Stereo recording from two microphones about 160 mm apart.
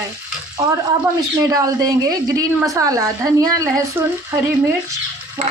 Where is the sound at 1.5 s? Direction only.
20° right (ahead or behind).